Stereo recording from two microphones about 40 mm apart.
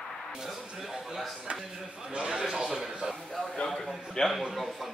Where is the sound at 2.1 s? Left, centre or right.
Right.